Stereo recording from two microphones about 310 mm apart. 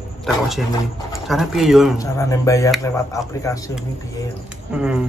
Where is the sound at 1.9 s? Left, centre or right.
Centre.